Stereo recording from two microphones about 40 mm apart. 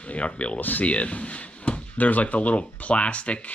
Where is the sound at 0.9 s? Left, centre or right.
Left.